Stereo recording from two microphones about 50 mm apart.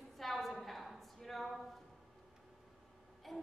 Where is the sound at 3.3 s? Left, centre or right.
Centre.